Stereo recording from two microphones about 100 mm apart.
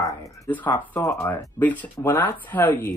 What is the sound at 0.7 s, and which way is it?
Speech, 30° left (ahead or behind).